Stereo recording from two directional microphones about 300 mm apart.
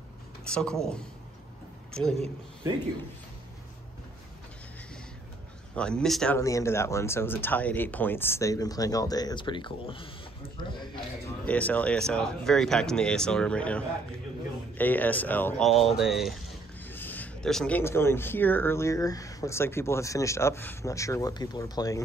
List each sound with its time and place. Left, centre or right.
0.5 s a woman's voice: centre
2.1 s speech: right
5.8 s speech: centre
11.4 s speech: centre